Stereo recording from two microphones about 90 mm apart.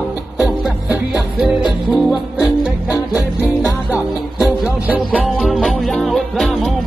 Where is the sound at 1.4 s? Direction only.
5° right (ahead or behind).